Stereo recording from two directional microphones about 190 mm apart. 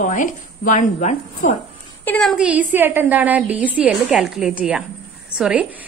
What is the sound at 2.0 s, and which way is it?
A woman's voice, 5° left (ahead or behind).